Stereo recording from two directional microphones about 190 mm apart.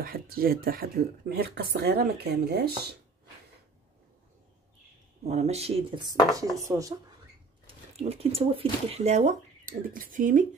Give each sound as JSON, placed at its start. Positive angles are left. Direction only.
{"t": 0.0, "sound": "speech", "side_deg": -50}
{"t": 5.2, "sound": "speech", "side_deg": -35}
{"t": 6.7, "sound": "speech", "side_deg": -5}
{"t": 7.6, "sound": "speech", "side_deg": -30}